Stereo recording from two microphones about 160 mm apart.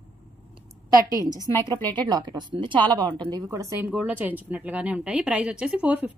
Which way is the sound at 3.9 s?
10° right (ahead or behind).